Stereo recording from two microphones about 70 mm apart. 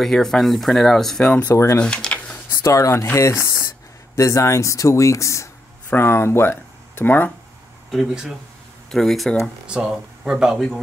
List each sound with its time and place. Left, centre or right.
0.0 s speech: centre
1.5 s speech: left
1.8 s a sound: centre
2.5 s speech: left
5.9 s speech: left
8.1 s speech: centre
8.9 s speech: centre
9.7 s speech: centre